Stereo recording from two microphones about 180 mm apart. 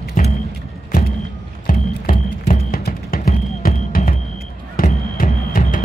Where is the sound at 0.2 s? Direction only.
45° left (ahead or behind).